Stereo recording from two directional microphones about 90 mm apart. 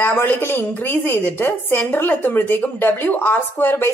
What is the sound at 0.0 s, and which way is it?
A woman's voice, 25° left (ahead or behind).